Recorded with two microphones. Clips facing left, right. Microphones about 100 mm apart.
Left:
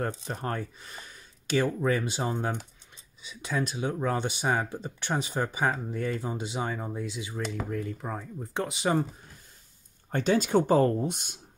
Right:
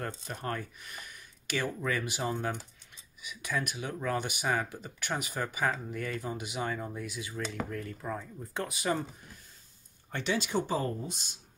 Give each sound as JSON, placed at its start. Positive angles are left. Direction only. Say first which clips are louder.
{"t": 0.2, "sound": "speech", "louder": "left 4 dB", "side_deg": 30}
{"t": 10.1, "sound": "speech", "louder": "left 7 dB", "side_deg": 45}